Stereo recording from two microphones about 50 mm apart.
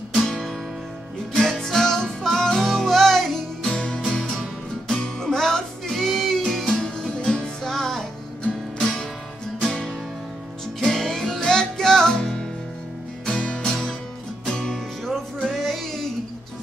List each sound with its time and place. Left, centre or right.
0.1 s guitar: centre
1.3 s music: centre
4.1 s music: centre
6.8 s music: centre
10.8 s music: centre